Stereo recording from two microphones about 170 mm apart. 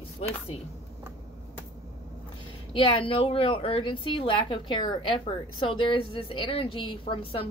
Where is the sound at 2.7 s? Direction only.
30° left (ahead or behind).